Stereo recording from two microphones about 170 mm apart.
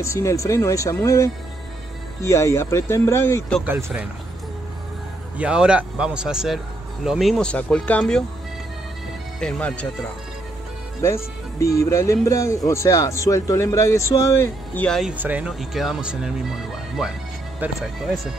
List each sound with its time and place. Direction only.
0.0 s speech: 15° left (ahead or behind)
3.6 s speech: 10° right (ahead or behind)
5.4 s speech: 5° right (ahead or behind)
9.4 s speech: 5° left (ahead or behind)
11.0 s speech: 15° left (ahead or behind)
14.9 s speech: centre (ahead or behind)
17.6 s speech: centre (ahead or behind)